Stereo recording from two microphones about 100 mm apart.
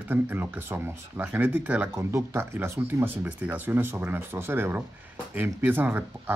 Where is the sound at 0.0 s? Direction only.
20° right (ahead or behind).